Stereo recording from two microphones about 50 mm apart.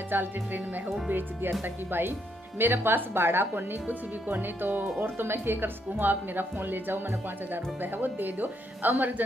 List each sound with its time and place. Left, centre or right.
0.1 s speech: right
5.0 s speech: right